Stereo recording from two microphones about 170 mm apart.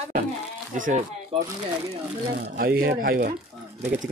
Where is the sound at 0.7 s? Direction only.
50° right (ahead or behind).